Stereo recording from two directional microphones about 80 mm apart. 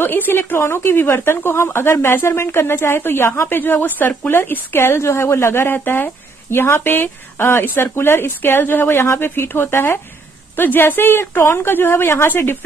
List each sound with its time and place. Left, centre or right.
0.0 s a woman's voice: left